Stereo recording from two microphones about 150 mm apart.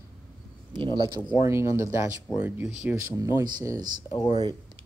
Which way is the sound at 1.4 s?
15° right (ahead or behind).